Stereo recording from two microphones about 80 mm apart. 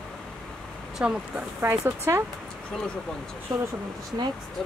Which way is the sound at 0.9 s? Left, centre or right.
Centre.